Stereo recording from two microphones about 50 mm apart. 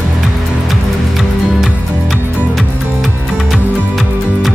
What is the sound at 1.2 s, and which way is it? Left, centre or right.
Music, centre.